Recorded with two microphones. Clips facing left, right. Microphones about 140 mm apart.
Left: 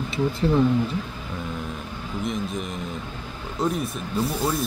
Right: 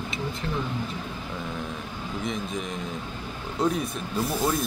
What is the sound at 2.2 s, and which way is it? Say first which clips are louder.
Speech: left 3 dB; centre (ahead or behind).